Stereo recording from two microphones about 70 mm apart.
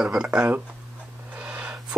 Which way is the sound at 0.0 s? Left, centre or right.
Centre.